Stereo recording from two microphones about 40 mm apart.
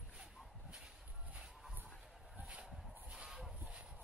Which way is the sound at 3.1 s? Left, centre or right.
Centre.